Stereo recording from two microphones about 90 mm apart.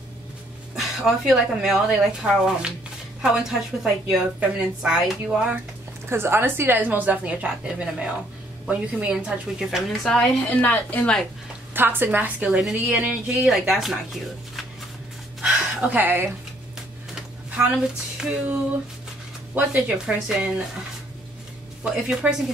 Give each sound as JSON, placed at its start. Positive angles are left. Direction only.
{"t": 0.7, "sound": "a woman's voice", "side_deg": -5}
{"t": 6.0, "sound": "a woman's voice", "side_deg": -25}
{"t": 10.0, "sound": "a woman's voice", "side_deg": 15}
{"t": 11.7, "sound": "a woman's voice", "side_deg": -20}
{"t": 12.4, "sound": "speech", "side_deg": -5}
{"t": 15.4, "sound": "a sound", "side_deg": -20}
{"t": 17.6, "sound": "speech", "side_deg": -10}
{"t": 18.1, "sound": "music", "side_deg": -10}
{"t": 19.5, "sound": "speech", "side_deg": -15}
{"t": 22.0, "sound": "speech", "side_deg": -15}